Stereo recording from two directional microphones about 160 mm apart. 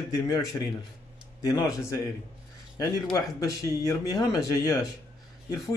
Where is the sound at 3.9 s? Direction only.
20° left (ahead or behind).